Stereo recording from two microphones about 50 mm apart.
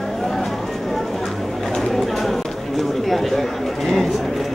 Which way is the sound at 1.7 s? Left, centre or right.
Centre.